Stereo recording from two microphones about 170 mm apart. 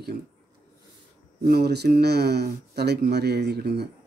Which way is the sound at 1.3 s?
70° right (ahead or behind).